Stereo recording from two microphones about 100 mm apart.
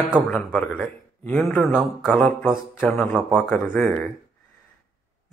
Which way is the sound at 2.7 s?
10° left (ahead or behind).